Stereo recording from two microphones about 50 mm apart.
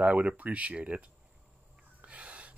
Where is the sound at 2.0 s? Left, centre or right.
Right.